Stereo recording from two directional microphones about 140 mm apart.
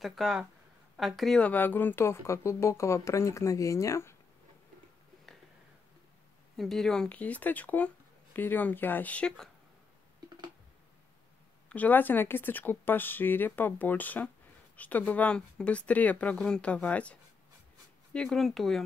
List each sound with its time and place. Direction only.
0.0 s speech: centre (ahead or behind); by 4.2 s 20° left (ahead or behind)
6.5 s speech: centre (ahead or behind)
11.7 s speech: 10° left (ahead or behind)